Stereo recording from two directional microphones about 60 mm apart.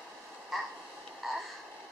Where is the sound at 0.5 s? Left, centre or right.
Centre.